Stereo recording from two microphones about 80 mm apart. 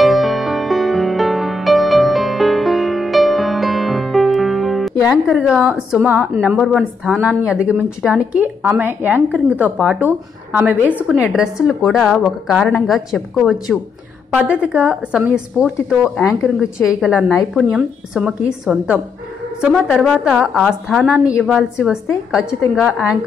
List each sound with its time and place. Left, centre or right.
0.0 s music: centre
5.0 s a woman's voice: centre
8.4 s a woman's voice: centre
11.3 s a woman's voice: centre
14.3 s a woman's voice: centre
19.7 s a woman's voice: centre
20.2 s a woman's voice: centre